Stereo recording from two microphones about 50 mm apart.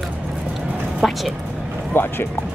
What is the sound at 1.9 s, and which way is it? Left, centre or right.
Speech, left.